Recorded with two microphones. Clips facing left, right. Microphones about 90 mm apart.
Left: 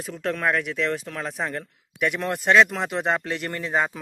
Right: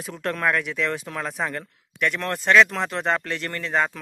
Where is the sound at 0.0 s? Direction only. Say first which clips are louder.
Even; centre (ahead or behind).